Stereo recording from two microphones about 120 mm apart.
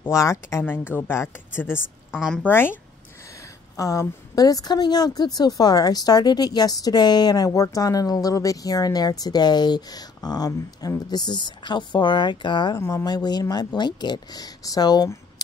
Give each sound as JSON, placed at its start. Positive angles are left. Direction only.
{"t": 0.0, "sound": "speech", "side_deg": 25}
{"t": 2.1, "sound": "speech", "side_deg": 5}
{"t": 2.4, "sound": "speech", "side_deg": 20}
{"t": 3.7, "sound": "a woman's voice", "side_deg": 25}
{"t": 12.7, "sound": "a woman's voice", "side_deg": 25}